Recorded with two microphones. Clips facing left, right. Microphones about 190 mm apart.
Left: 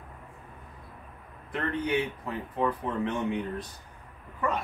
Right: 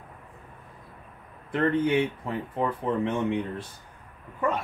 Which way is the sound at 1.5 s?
25° right (ahead or behind).